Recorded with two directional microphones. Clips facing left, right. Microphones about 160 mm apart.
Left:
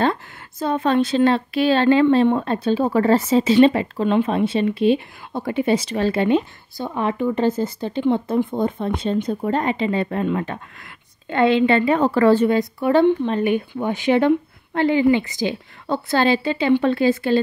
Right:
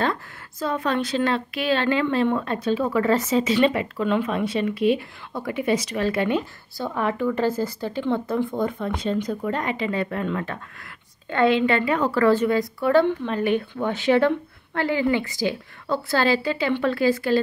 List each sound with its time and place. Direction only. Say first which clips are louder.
0.0 s speech: left 4 dB; 25° left (ahead or behind)